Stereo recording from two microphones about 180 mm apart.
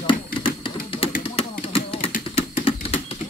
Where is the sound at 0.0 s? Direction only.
25° left (ahead or behind).